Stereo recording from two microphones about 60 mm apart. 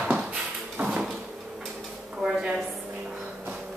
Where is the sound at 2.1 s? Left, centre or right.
Centre.